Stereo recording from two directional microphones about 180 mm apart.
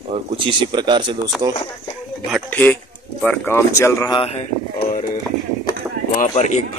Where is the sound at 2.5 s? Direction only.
10° left (ahead or behind).